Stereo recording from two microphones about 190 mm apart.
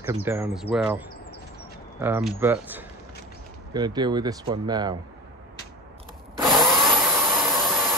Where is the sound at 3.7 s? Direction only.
20° right (ahead or behind).